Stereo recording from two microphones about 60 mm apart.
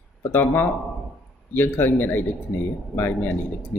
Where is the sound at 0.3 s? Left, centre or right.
Left.